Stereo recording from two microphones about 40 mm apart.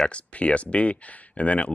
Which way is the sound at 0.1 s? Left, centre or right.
Left.